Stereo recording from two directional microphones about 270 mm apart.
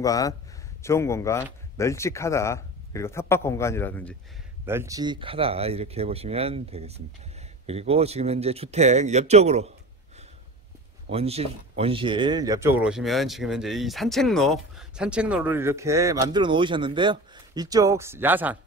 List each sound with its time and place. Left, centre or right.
0.0 s speech: centre
4.6 s speech: centre
11.1 s speech: right; by 18.6 s centre